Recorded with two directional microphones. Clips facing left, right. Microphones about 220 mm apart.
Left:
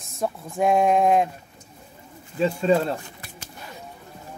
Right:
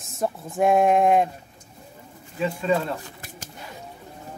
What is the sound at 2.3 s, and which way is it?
Speech, 30° left (ahead or behind).